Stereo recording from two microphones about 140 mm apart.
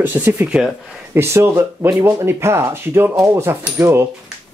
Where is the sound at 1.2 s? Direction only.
20° right (ahead or behind).